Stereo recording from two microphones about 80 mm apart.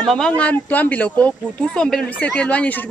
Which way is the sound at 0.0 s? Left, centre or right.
Centre.